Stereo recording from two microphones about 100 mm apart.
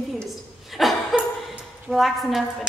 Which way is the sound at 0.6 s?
Centre (ahead or behind).